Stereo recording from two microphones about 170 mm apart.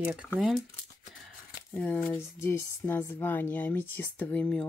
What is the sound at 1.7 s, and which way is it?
Speech, 5° left (ahead or behind).